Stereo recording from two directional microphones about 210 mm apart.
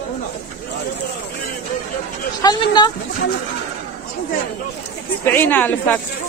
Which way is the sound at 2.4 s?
20° left (ahead or behind).